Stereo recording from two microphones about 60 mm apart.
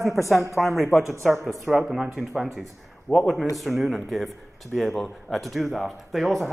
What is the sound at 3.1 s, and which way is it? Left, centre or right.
Speech, centre.